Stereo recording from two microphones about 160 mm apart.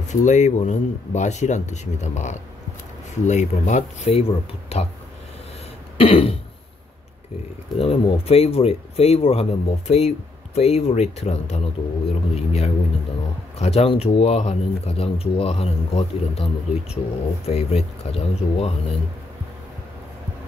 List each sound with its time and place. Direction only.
0.1 s speech: 50° left (ahead or behind)
5.9 s speech: 35° left (ahead or behind)
7.7 s speech: 40° left (ahead or behind)